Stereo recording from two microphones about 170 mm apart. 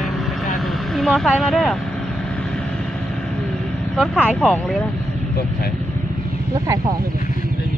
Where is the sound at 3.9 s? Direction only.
Centre (ahead or behind).